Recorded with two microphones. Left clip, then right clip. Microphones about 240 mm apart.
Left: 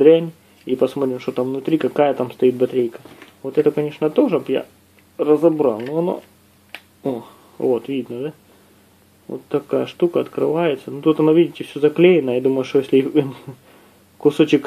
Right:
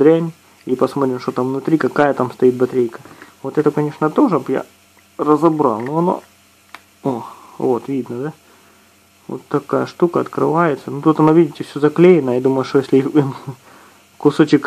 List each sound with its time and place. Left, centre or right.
0.0 s speech: right
9.3 s speech: right